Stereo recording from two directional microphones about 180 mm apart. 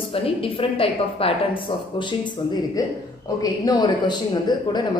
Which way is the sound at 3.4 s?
20° left (ahead or behind).